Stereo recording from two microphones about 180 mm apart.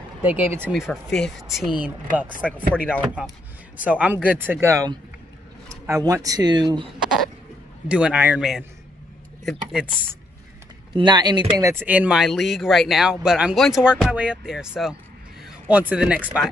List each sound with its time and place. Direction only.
0.2 s speech: 10° right (ahead or behind)
7.9 s speech: 5° right (ahead or behind)
10.9 s speech: 25° right (ahead or behind); by 14.7 s 5° right (ahead or behind)
15.7 s speech: 5° right (ahead or behind)